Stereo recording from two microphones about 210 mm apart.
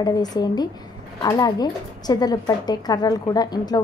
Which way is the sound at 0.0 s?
20° left (ahead or behind).